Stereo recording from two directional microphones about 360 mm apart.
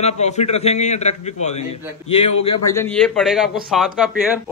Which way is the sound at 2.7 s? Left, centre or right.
Centre.